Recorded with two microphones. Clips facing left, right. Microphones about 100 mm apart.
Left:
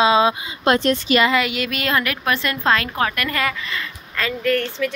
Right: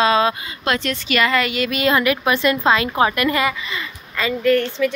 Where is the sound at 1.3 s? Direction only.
5° left (ahead or behind).